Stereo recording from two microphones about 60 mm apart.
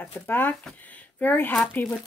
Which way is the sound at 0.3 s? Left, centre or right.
Left.